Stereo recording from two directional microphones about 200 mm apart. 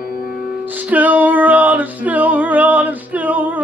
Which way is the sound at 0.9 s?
10° right (ahead or behind).